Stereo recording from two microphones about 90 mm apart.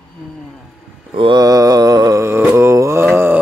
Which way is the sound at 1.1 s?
70° right (ahead or behind).